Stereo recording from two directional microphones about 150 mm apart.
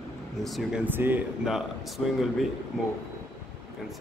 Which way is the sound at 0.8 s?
15° right (ahead or behind).